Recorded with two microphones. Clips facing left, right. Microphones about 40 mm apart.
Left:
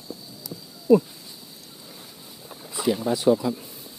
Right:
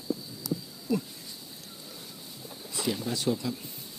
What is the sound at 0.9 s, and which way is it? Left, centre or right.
Speech, left.